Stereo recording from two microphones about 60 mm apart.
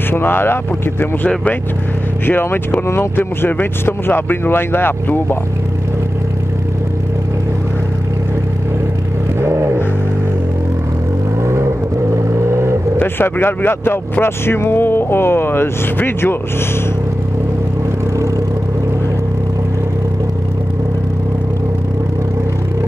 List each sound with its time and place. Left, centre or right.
0.1 s speech: left
2.2 s speech: left
9.4 s vehicle: right
12.3 s vehicle: right
12.9 s speech: left